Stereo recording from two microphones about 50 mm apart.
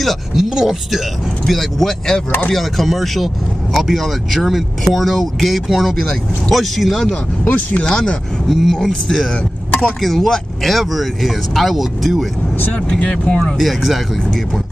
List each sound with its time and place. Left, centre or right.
0.0 s speech: centre
7.4 s speech: left
7.8 s speech: centre
13.0 s speech: left
13.6 s speech: centre